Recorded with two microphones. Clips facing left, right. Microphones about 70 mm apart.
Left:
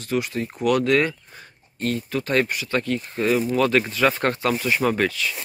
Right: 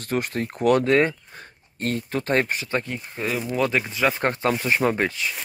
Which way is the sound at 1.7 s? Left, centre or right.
Right.